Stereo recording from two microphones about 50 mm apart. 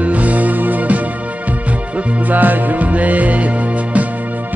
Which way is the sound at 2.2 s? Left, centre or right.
Right.